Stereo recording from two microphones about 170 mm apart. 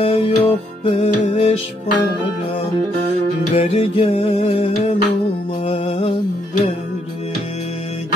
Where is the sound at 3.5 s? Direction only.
40° left (ahead or behind).